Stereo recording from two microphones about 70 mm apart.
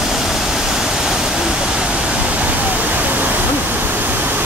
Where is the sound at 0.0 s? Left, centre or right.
Centre.